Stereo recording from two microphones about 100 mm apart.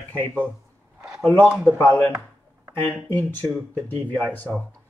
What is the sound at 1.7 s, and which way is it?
Speech, 25° left (ahead or behind).